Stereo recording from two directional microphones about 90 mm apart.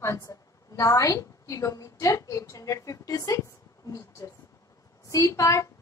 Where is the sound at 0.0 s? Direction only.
35° left (ahead or behind).